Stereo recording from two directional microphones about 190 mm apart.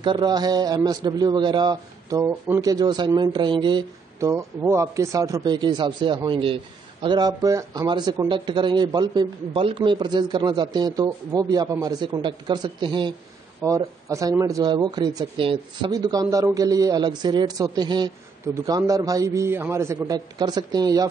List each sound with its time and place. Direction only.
0.0 s speech: 25° right (ahead or behind)
4.3 s a man's voice: 15° right (ahead or behind)